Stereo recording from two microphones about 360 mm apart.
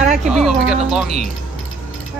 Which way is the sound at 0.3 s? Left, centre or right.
Centre.